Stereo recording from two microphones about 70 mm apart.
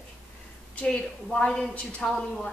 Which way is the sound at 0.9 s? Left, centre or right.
Centre.